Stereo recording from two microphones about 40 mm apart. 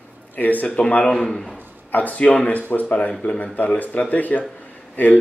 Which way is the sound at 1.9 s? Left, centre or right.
Left.